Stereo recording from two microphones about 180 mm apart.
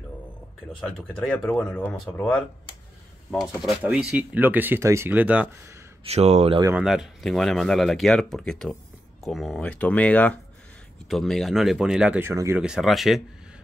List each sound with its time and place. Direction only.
0.7 s speech: 5° left (ahead or behind)
6.0 s speech: 35° right (ahead or behind)
6.7 s speech: 5° right (ahead or behind)